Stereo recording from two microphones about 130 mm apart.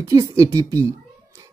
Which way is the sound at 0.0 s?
25° right (ahead or behind).